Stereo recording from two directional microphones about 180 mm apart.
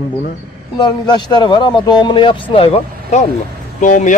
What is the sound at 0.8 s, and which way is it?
Speech, 25° left (ahead or behind).